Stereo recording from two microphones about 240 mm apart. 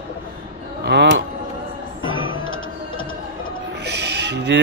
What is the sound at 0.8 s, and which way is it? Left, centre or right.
Speech, right.